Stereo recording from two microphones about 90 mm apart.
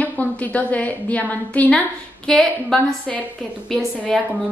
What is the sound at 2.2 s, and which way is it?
A woman's voice, 5° left (ahead or behind).